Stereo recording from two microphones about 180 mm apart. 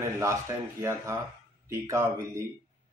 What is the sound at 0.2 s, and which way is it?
Speech, 15° right (ahead or behind).